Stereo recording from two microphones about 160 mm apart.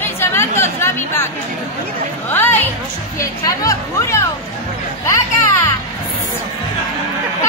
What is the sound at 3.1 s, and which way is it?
Speech, 20° left (ahead or behind).